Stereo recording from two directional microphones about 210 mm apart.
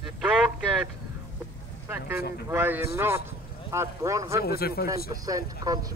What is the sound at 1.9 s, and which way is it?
Vehicle, 10° right (ahead or behind).